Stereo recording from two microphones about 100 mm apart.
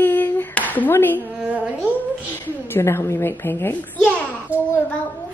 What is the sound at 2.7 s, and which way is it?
A woman's voice, 25° left (ahead or behind).